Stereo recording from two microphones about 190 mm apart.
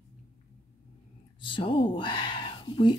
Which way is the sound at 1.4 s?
25° left (ahead or behind).